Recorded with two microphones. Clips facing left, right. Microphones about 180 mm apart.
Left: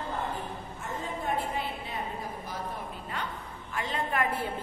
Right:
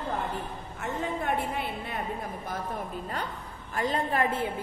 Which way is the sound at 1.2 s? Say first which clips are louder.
Right 2 dB; 60° right (ahead or behind).